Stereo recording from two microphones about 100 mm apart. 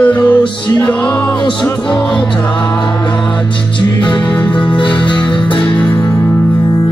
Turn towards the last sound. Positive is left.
turn(degrees=55)  # may be behind; listen again after turning